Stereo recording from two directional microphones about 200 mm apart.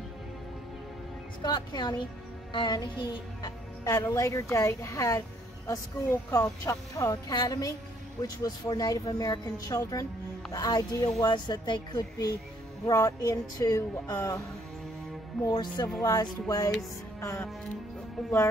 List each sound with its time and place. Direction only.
1.4 s a woman's voice: 20° left (ahead or behind)
15.4 s a woman's voice: 20° left (ahead or behind)
17.2 s music: 15° left (ahead or behind)